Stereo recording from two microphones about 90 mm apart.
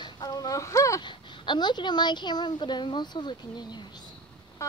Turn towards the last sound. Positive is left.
turn(degrees=55)  # may be behind; listen again after turning